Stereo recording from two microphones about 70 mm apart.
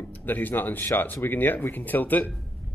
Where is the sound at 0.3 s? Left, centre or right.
Left.